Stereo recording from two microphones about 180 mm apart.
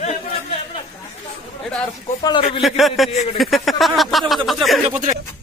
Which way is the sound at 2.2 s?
25° left (ahead or behind).